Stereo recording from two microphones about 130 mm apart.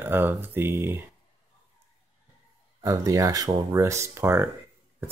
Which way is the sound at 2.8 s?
25° right (ahead or behind).